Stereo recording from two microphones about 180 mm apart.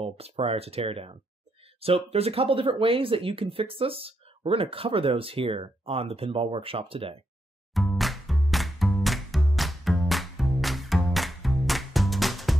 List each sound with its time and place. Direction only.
0.0 s speech: 35° right (ahead or behind)
7.7 s music: centre (ahead or behind)